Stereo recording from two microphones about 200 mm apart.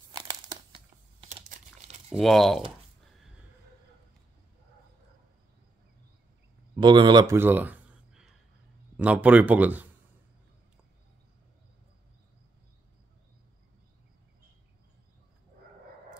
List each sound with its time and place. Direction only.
0.1 s crumpling: 20° right (ahead or behind)
1.3 s computer keyboard: 35° right (ahead or behind)
2.0 s speech: centre (ahead or behind)
6.8 s a sound: 25° right (ahead or behind); by 8.4 s 5° right (ahead or behind)
8.9 s speech: 5° right (ahead or behind)